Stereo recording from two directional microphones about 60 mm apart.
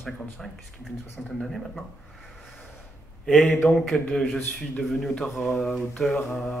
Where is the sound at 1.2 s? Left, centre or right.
Centre.